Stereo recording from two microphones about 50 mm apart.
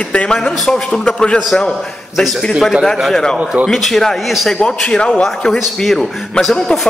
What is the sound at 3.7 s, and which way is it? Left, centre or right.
Speech, centre.